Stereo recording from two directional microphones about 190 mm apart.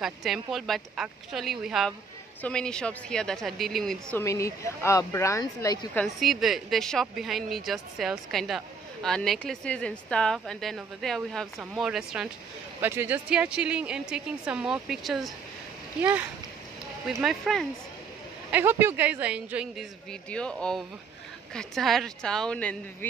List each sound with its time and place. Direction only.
0.0 s a woman's voice: centre (ahead or behind)
4.2 s speech: 15° left (ahead or behind)
5.9 s a woman's voice: centre (ahead or behind)
18.5 s a woman's voice: 10° right (ahead or behind); by 22.8 s 5° left (ahead or behind)